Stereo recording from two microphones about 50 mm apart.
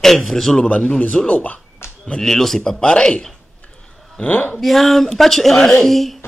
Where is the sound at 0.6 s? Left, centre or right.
Left.